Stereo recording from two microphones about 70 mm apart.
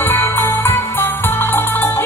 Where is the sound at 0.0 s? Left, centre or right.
Left.